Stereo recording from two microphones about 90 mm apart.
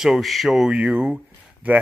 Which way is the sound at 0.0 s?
Centre (ahead or behind).